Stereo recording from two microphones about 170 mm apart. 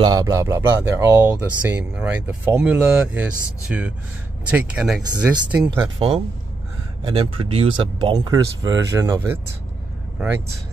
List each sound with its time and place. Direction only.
0.0 s speech: 20° right (ahead or behind); by 5.6 s 5° right (ahead or behind)
5.9 s speech: 35° right (ahead or behind); by 10.4 s 10° right (ahead or behind)